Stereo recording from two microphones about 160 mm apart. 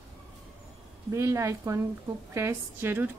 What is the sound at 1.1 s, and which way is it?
Speech, 20° right (ahead or behind).